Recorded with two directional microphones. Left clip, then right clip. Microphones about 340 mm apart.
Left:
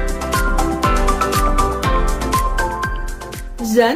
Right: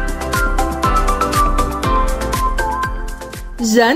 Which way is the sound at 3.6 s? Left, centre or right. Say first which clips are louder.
Right 2 dB; right.